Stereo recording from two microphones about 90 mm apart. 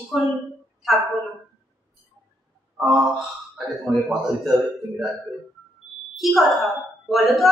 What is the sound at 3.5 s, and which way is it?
Speech, 5° right (ahead or behind).